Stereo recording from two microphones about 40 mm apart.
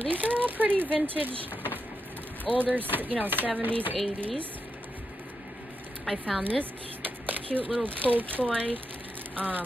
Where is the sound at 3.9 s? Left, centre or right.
Left.